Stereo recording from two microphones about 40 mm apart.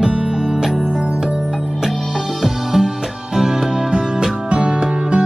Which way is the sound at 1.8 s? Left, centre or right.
Centre.